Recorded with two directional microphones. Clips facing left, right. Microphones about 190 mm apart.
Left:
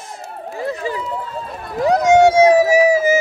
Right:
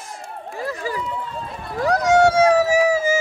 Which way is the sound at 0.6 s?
25° left (ahead or behind).